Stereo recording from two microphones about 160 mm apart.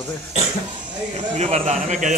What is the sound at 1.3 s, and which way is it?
Speech, 40° right (ahead or behind).